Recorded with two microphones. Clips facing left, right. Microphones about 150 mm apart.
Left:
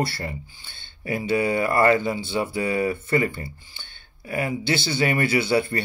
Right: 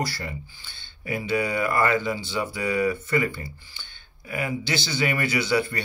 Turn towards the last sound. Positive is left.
turn(degrees=25)  # may be behind; listen again after turning